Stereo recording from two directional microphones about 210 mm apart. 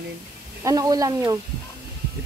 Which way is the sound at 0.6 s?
15° right (ahead or behind).